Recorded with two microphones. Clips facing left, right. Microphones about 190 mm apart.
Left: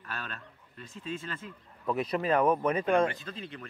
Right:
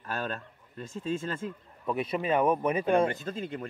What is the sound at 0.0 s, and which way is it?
Speech, 40° right (ahead or behind).